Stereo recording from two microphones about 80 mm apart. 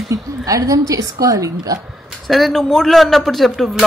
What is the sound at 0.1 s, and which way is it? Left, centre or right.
A woman's voice, right.